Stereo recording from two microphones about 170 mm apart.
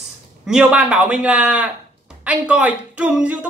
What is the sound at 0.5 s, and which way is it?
Speech, 5° right (ahead or behind).